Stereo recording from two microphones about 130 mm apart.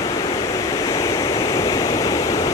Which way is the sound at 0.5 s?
25° left (ahead or behind).